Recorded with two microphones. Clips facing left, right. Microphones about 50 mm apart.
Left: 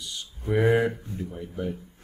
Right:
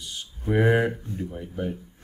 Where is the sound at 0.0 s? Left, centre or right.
Right.